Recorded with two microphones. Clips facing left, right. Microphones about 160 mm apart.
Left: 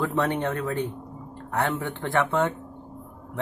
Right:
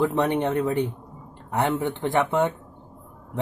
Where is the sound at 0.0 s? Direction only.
20° right (ahead or behind).